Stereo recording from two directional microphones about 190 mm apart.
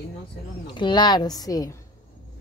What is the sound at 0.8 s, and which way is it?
Speech, 25° left (ahead or behind).